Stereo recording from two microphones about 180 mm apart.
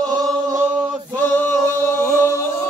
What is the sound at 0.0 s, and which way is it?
Chant, 20° right (ahead or behind).